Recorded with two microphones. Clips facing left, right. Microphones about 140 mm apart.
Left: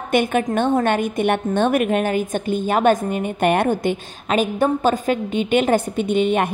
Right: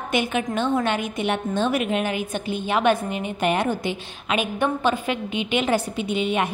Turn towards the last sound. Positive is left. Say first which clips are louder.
# left 5 dB
turn(degrees=50)  # may be behind; listen again after turning